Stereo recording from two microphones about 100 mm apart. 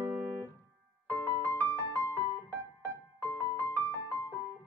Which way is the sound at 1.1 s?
20° left (ahead or behind).